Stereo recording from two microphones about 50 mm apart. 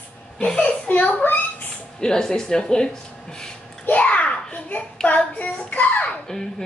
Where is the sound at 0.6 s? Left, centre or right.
Left.